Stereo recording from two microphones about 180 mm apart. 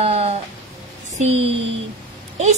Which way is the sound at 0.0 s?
35° right (ahead or behind).